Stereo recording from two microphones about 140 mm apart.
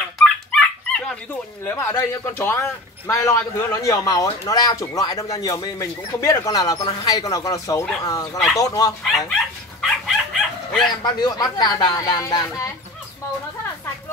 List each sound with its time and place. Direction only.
0.2 s dog: 5° left (ahead or behind)
1.6 s a man's voice: 15° left (ahead or behind)
9.3 s dog: centre (ahead or behind)
10.9 s a man's voice: 30° left (ahead or behind)